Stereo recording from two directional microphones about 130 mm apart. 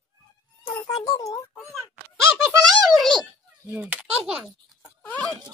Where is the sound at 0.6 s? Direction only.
35° left (ahead or behind).